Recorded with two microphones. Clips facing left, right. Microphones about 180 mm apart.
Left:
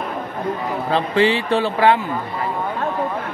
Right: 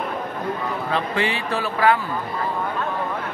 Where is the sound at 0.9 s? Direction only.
30° left (ahead or behind).